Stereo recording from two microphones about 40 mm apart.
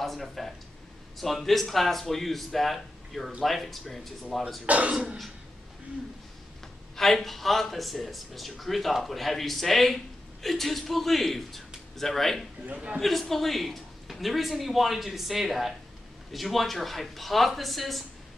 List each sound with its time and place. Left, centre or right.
0.0 s speech: centre
4.6 s speech: right
7.0 s speech: centre
12.7 s a man's voice: right
13.0 s speech: centre